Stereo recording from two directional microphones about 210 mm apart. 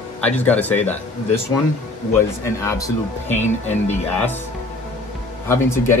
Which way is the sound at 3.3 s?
35° left (ahead or behind).